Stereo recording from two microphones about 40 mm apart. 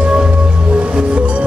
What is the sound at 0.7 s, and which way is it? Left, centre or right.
Music, right.